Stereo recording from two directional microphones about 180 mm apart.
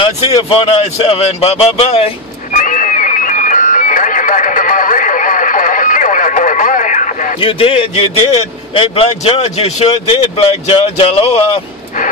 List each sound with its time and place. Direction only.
0.0 s a man's voice: 30° left (ahead or behind)
2.6 s a sound: 45° left (ahead or behind)
7.3 s a man's voice: 30° left (ahead or behind)